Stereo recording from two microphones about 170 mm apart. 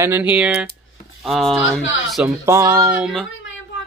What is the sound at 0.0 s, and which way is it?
Speech, 10° right (ahead or behind).